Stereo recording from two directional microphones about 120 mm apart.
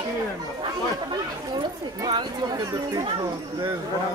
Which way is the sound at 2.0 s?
35° right (ahead or behind).